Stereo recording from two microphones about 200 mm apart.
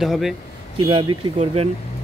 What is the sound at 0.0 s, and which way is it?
Speech, centre (ahead or behind).